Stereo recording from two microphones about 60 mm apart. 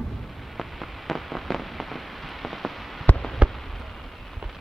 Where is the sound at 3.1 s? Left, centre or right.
Centre.